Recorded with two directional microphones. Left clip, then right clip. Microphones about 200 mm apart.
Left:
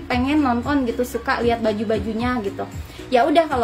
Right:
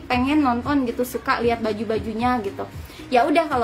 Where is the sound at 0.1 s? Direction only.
20° right (ahead or behind).